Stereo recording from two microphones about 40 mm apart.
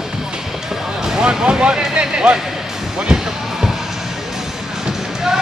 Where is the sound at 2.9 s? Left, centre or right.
Centre.